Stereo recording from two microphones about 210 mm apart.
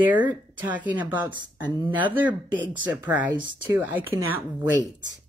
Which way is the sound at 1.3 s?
20° right (ahead or behind).